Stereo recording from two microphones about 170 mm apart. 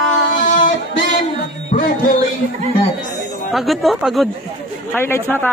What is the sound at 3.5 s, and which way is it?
Speech, centre (ahead or behind).